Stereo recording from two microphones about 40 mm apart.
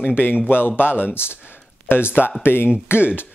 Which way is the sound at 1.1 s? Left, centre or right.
Left.